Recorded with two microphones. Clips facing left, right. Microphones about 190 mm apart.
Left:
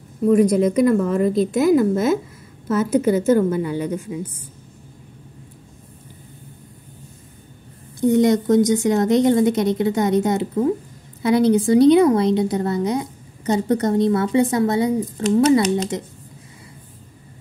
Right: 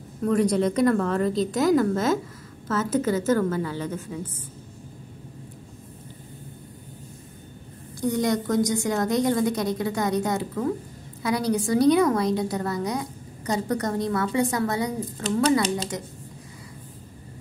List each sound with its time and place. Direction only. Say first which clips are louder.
0.3 s a woman's voice: left 6 dB; 10° left (ahead or behind)
8.0 s a woman's voice: left 8 dB; 25° left (ahead or behind)